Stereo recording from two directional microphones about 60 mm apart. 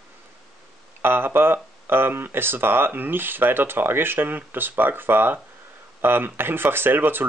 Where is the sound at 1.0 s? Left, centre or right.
Right.